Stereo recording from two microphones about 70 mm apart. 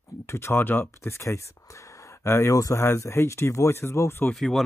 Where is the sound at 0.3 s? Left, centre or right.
Left.